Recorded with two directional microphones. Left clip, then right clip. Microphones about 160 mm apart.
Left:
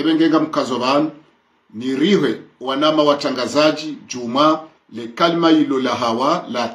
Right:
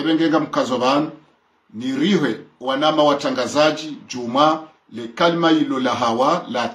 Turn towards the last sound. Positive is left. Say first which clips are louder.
# even
turn(degrees=-20)  # may be behind; listen again after turning